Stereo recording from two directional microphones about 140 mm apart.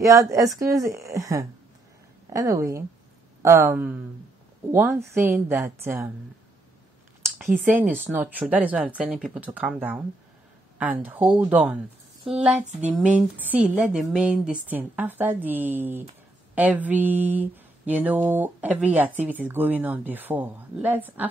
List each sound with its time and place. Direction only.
0.0 s a woman's voice: 20° right (ahead or behind)
7.6 s speech: 10° right (ahead or behind)